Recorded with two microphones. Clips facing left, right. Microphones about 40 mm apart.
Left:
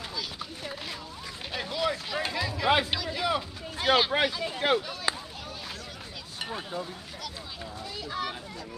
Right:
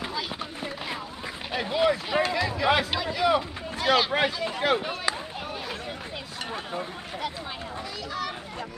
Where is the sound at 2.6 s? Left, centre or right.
Centre.